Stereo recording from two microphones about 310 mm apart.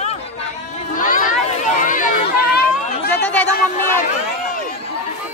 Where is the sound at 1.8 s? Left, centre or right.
Left.